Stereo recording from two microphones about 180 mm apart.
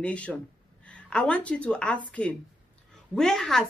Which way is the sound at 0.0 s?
5° left (ahead or behind).